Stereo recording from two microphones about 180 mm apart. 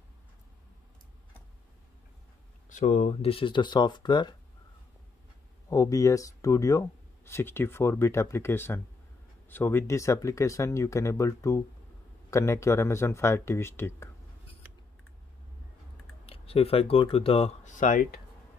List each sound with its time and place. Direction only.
2.7 s speech: 40° left (ahead or behind); by 4.4 s 25° left (ahead or behind)
5.7 s speech: 20° left (ahead or behind)
16.3 s speech: 30° left (ahead or behind)
17.7 s speech: 45° left (ahead or behind)